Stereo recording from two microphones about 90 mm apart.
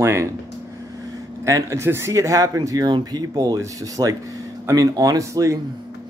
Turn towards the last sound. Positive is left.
turn(degrees=-40)  # may be behind; listen again after turning